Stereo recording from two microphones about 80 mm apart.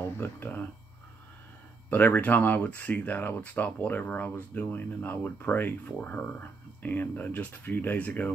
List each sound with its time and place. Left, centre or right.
0.2 s speech: left
1.9 s speech: left